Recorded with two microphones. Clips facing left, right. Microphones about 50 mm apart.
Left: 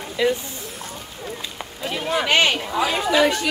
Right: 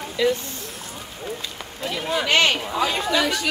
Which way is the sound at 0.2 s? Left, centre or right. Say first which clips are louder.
Even; centre.